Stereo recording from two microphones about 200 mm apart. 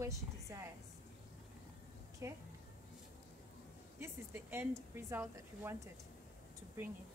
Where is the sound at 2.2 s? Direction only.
15° right (ahead or behind).